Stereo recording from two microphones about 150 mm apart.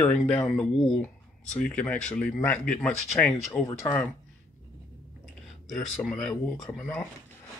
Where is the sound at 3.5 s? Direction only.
20° left (ahead or behind).